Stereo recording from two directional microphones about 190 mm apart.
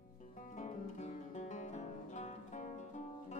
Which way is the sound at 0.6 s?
40° left (ahead or behind).